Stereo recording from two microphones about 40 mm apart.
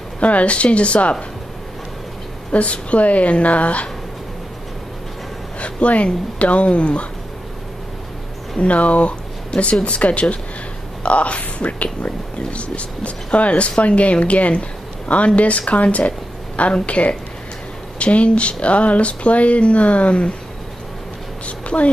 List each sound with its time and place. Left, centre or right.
0.2 s speech: left
2.5 s speech: left
5.6 s a sound: left
6.4 s speech: left
8.5 s speech: left
21.5 s a sound: left